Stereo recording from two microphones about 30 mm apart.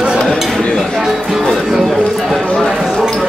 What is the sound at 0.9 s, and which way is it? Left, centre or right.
Speech, centre.